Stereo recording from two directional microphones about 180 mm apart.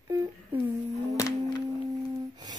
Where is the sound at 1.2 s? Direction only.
15° left (ahead or behind).